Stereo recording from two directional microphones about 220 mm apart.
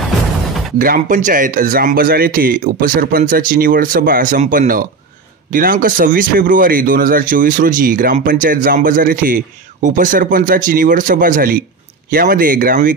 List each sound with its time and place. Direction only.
0.7 s a man's voice: 40° right (ahead or behind)